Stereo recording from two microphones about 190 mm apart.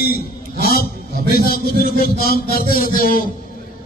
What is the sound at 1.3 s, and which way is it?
Speech, 50° left (ahead or behind).